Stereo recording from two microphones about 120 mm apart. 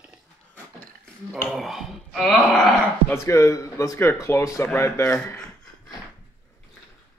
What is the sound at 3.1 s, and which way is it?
Speech, 25° left (ahead or behind).